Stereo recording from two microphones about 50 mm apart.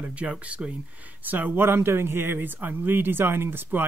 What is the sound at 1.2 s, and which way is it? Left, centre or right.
Speech, right.